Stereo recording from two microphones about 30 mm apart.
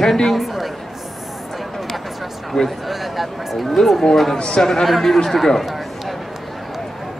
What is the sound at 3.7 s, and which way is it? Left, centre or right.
Speech, centre.